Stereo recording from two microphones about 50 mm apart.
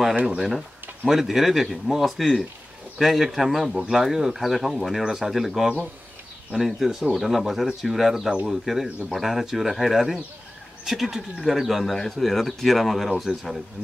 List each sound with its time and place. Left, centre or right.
0.1 s speech: right
0.4 s speech: centre